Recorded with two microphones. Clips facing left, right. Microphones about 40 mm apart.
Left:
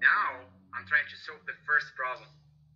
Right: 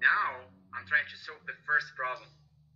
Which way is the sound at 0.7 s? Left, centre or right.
Centre.